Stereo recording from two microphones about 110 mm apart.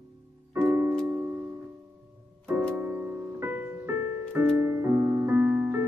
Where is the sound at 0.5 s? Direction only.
25° right (ahead or behind).